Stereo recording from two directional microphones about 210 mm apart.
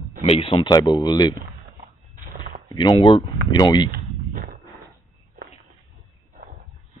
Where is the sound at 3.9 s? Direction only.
40° right (ahead or behind).